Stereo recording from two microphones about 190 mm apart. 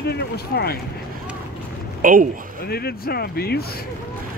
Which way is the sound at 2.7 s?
55° left (ahead or behind).